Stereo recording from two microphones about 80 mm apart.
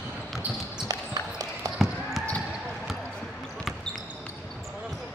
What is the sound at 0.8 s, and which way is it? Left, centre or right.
Basketball bounce, right.